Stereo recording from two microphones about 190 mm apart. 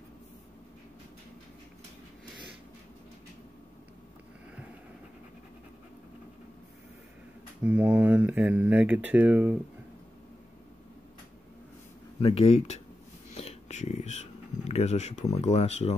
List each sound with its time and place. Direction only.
7.6 s speech: 5° right (ahead or behind)
12.2 s speech: 30° left (ahead or behind)